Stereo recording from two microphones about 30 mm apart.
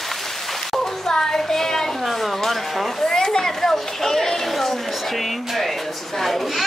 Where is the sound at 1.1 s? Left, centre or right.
Centre.